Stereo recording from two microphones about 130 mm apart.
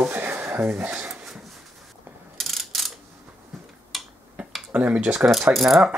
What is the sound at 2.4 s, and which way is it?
Mechanisms, centre (ahead or behind).